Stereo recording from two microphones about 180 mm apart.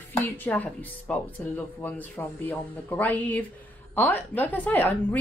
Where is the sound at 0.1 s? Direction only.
10° left (ahead or behind).